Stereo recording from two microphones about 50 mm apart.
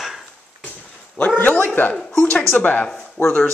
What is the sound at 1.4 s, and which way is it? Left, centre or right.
A man's voice, left.